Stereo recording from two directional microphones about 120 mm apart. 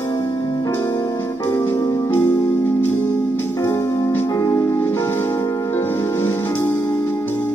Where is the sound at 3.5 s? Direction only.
20° left (ahead or behind).